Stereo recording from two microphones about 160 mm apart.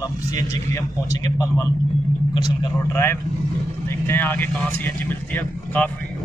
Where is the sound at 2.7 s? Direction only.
15° left (ahead or behind).